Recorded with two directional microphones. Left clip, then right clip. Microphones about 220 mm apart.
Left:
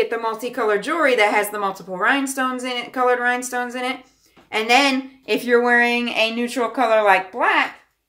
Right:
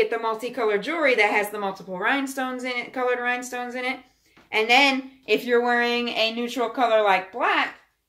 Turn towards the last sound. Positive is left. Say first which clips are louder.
# left 5 dB
turn(degrees=10)  # may be behind; listen again after turning